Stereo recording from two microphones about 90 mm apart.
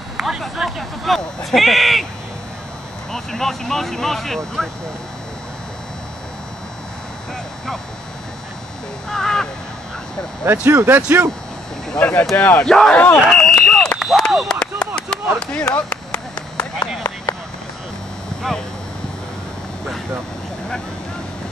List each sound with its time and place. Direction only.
0.2 s speech: 5° right (ahead or behind)
3.1 s speech: 5° left (ahead or behind)
9.1 s speech: 5° left (ahead or behind)
10.4 s speech: 25° right (ahead or behind)
11.9 s speech: 15° left (ahead or behind)
12.6 s speech: 5° left (ahead or behind)
13.3 s a sound: 10° left (ahead or behind)